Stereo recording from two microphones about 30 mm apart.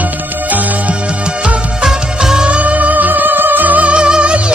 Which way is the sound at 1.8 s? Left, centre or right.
Right.